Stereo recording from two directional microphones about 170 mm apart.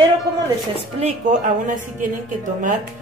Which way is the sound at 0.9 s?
45° right (ahead or behind).